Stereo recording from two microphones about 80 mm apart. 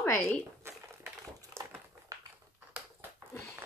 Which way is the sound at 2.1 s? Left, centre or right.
Right.